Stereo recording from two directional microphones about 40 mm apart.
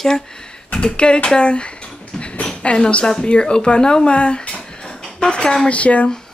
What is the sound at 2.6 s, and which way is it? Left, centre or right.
Speech, left.